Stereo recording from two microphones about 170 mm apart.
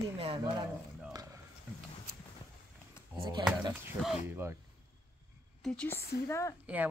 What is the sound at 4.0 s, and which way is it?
Speech, 5° left (ahead or behind).